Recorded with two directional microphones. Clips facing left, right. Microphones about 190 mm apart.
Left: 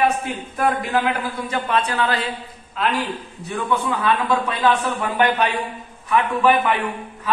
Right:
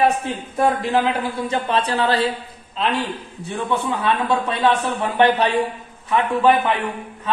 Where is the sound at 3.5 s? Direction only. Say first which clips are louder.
Even; 30° right (ahead or behind).